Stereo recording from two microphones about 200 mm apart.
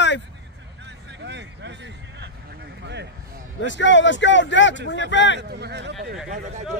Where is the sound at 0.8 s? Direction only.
60° right (ahead or behind).